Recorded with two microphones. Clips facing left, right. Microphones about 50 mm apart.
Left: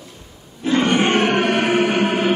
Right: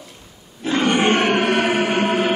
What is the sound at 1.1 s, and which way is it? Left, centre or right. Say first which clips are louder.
Music: even; right.